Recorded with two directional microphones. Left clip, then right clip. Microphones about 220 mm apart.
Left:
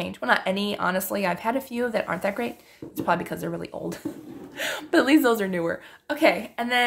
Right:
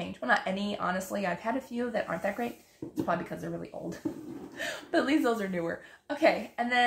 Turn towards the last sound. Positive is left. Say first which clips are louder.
# left 4 dB
turn(degrees=45)  # may be behind; listen again after turning